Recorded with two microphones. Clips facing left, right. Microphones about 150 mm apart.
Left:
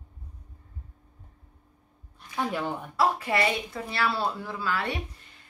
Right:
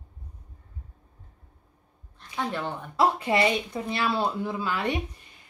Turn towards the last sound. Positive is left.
turn(degrees=-20)  # may be behind; listen again after turning